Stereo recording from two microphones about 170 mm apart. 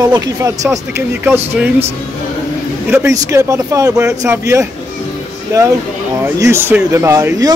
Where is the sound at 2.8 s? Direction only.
15° right (ahead or behind).